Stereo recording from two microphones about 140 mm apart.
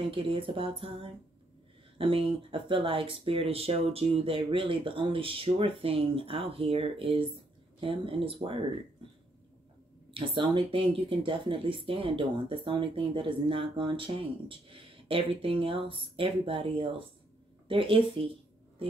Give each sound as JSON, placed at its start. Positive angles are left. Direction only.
{"t": 0.0, "sound": "speech", "side_deg": -40}
{"t": 10.1, "sound": "speech", "side_deg": -35}